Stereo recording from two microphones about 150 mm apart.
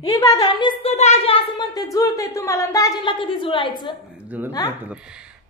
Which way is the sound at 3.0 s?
35° left (ahead or behind).